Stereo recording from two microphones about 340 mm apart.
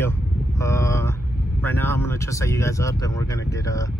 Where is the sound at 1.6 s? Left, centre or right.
Centre.